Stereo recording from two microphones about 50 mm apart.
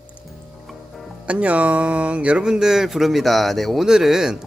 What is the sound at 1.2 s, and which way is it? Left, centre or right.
Speech, right.